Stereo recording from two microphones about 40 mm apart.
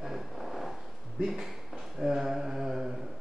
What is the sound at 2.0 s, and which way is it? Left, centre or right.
Speech, centre.